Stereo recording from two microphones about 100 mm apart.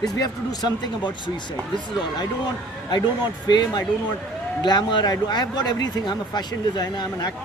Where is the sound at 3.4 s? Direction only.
45° left (ahead or behind).